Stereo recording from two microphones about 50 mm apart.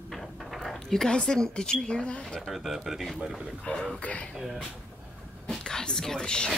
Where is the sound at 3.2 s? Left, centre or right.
Centre.